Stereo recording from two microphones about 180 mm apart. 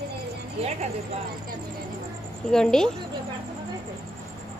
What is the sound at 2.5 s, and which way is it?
Speech, 5° left (ahead or behind).